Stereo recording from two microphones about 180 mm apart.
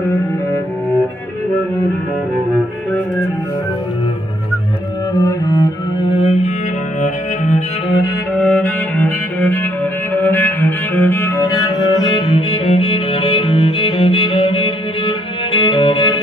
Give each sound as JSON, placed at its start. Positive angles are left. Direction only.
{"t": 5.1, "sound": "music", "side_deg": 20}
{"t": 7.0, "sound": "cello", "side_deg": 45}
{"t": 8.4, "sound": "cello", "side_deg": 10}
{"t": 12.4, "sound": "music", "side_deg": 35}